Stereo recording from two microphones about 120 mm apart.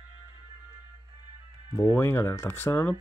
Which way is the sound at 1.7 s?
20° left (ahead or behind).